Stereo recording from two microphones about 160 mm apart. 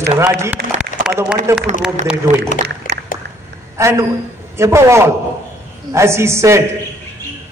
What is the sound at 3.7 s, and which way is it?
A woman's voice, 15° right (ahead or behind).